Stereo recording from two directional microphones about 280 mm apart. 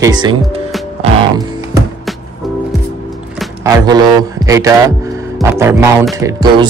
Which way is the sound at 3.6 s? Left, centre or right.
Centre.